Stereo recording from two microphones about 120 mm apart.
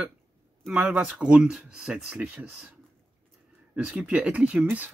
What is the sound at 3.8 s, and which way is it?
Speech, 10° right (ahead or behind).